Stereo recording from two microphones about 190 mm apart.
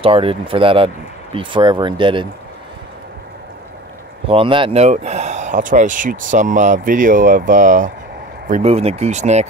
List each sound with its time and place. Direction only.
0.0 s speech: 30° right (ahead or behind)
4.3 s speech: 25° right (ahead or behind)